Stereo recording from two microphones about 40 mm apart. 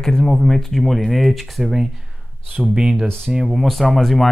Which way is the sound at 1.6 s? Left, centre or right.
Centre.